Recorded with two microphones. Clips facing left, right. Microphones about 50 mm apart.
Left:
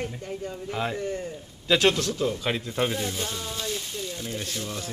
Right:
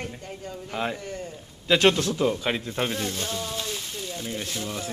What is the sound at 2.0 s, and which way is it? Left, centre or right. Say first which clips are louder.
Speech: right 3 dB; right.